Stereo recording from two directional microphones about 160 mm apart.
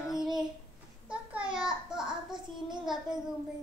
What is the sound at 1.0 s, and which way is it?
A child's voice, 5° right (ahead or behind).